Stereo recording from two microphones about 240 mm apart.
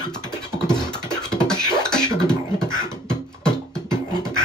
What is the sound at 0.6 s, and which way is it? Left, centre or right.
Beatboxing, centre.